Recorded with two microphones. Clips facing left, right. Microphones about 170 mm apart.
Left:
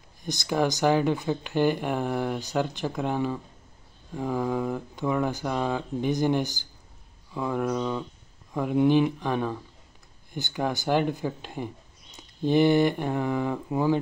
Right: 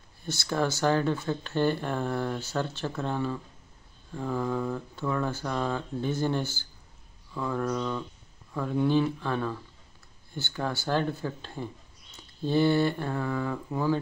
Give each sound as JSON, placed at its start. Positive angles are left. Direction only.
{"t": 0.2, "sound": "speech", "side_deg": 15}